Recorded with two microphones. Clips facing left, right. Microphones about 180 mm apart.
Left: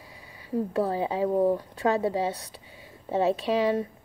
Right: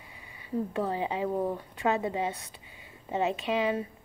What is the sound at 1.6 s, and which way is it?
Speech, 35° left (ahead or behind).